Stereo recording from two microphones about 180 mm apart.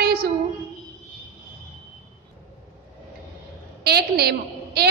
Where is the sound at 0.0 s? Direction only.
60° right (ahead or behind).